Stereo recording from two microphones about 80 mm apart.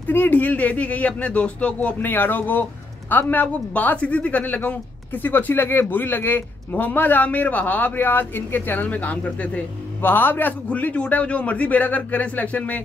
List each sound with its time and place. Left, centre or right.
0.1 s speech: left